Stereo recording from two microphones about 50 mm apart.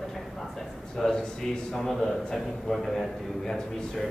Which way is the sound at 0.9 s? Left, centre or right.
Centre.